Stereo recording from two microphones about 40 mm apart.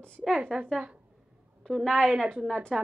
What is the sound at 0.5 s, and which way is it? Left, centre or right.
Speech, centre.